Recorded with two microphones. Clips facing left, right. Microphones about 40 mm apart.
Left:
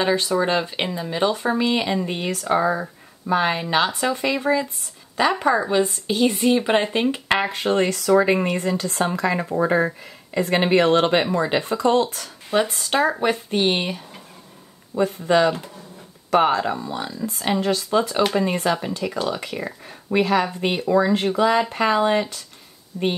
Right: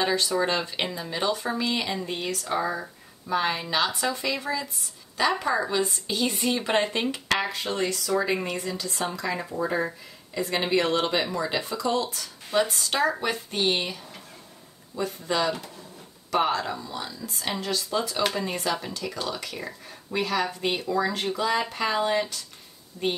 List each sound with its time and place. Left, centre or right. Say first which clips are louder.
0.0 s speech: left 4 dB; left
1.3 s a woman's voice: left 6 dB; left
12.4 s speech: left 4 dB; left